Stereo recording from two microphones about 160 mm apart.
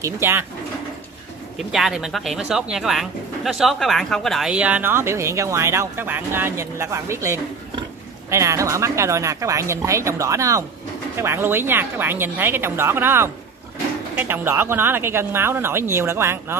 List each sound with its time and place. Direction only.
0.0 s speech: 15° right (ahead or behind)
1.7 s speech: centre (ahead or behind)